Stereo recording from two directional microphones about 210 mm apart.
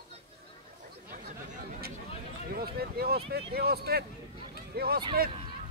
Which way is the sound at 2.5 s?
45° right (ahead or behind).